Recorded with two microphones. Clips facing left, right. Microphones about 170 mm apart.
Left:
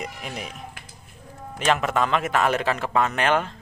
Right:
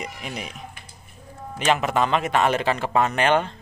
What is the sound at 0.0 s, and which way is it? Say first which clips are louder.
Speech: even; 5° right (ahead or behind).